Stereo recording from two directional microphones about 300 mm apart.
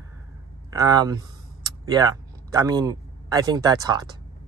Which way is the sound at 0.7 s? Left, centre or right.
Centre.